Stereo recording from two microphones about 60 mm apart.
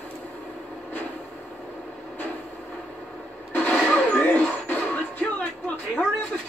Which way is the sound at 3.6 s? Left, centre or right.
Centre.